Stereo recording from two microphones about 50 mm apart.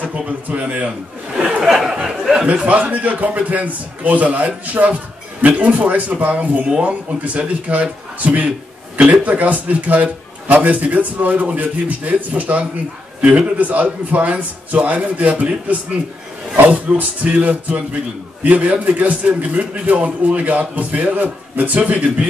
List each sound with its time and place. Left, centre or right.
0.0 s a man's voice: right
1.6 s speech: centre
2.4 s a man's voice: right